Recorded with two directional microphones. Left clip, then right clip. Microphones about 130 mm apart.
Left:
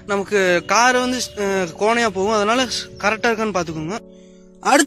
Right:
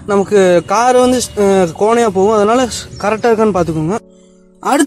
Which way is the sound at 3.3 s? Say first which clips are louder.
Right 9 dB; 25° left (ahead or behind).